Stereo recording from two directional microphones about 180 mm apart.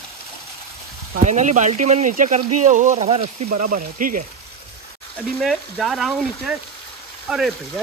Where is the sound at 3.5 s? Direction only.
50° right (ahead or behind).